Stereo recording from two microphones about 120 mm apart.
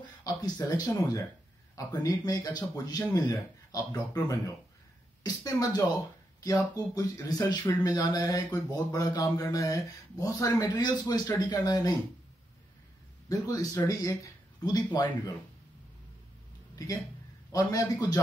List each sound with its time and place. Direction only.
0.2 s speech: 35° left (ahead or behind)
5.2 s speech: 30° left (ahead or behind)
13.3 s speech: 30° left (ahead or behind)
16.7 s speech: 30° left (ahead or behind)